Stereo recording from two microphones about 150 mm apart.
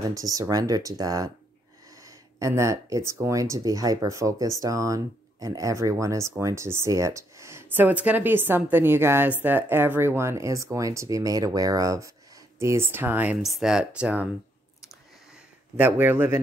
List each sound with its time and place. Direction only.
0.1 s speech: 20° right (ahead or behind)
15.7 s speech: 10° right (ahead or behind)